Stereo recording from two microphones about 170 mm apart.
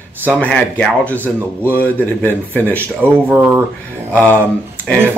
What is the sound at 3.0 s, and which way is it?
Speech, 10° right (ahead or behind).